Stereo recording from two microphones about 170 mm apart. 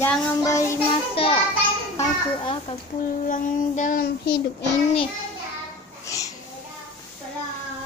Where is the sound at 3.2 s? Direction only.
50° left (ahead or behind).